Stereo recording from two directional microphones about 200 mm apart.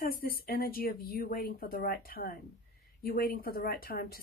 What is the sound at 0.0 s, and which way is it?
Speech, 45° left (ahead or behind).